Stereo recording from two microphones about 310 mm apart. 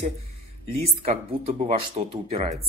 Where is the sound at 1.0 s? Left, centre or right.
Centre.